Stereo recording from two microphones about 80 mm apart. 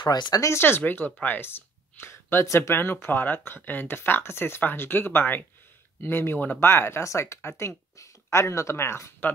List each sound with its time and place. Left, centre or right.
0.0 s speech: left
0.5 s speech: left